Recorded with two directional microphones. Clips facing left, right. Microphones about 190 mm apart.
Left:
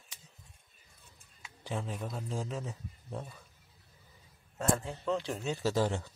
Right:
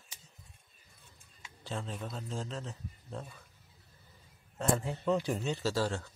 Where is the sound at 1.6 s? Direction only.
15° left (ahead or behind).